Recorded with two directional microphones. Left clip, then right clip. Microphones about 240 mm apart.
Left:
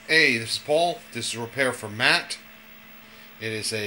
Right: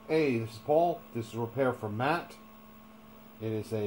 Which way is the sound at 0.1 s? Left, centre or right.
Centre.